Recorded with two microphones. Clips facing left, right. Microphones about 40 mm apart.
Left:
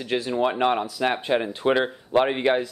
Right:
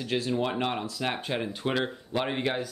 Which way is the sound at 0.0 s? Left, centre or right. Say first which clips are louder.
Left 5 dB; left.